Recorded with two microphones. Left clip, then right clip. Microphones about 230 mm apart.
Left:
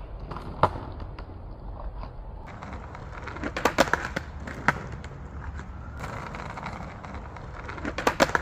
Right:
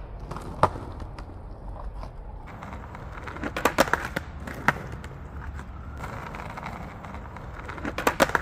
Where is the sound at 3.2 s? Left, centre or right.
Centre.